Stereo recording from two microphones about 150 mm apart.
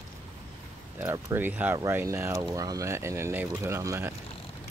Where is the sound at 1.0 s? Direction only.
15° right (ahead or behind).